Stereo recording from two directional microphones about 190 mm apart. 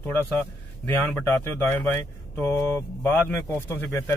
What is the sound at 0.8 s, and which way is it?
A man's voice, 10° left (ahead or behind).